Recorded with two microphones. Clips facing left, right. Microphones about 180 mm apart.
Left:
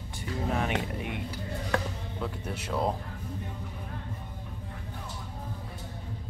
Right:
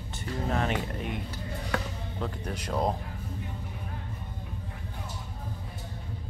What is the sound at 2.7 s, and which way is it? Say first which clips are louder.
Speech: right 1 dB; 15° right (ahead or behind).